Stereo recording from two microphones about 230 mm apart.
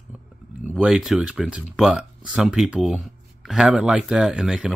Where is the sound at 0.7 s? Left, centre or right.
Centre.